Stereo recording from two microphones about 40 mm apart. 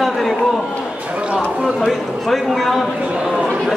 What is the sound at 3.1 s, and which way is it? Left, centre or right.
Speech, centre.